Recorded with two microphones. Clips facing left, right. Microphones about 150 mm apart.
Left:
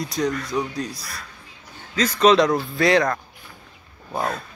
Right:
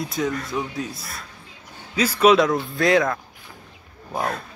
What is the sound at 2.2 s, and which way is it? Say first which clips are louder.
Speech: even; 5° right (ahead or behind).